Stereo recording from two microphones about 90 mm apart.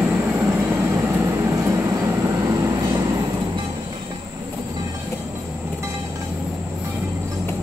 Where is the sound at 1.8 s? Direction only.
25° right (ahead or behind); by 3.2 s 40° right (ahead or behind).